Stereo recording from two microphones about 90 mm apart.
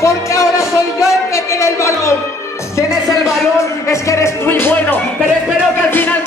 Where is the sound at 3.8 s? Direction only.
35° left (ahead or behind).